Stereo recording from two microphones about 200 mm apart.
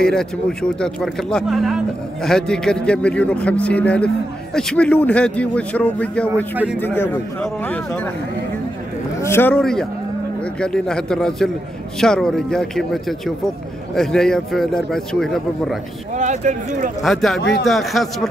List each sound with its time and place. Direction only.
0.0 s a man's voice: 5° left (ahead or behind)
6.5 s speech: 5° right (ahead or behind)
7.6 s a man's voice: 10° left (ahead or behind)
9.2 s a man's voice: 10° left (ahead or behind)
16.2 s speech: 40° right (ahead or behind)
17.0 s a man's voice: centre (ahead or behind)